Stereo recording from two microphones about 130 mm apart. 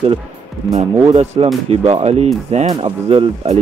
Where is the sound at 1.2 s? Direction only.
55° right (ahead or behind).